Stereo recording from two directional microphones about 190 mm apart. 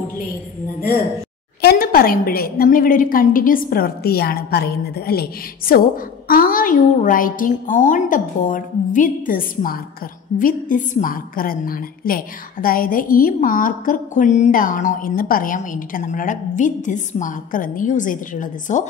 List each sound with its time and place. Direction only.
1.6 s a woman's voice: 55° left (ahead or behind)